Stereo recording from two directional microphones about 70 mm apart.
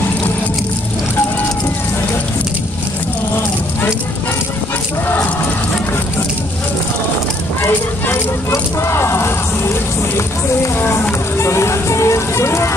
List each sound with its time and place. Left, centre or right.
8.1 s music: left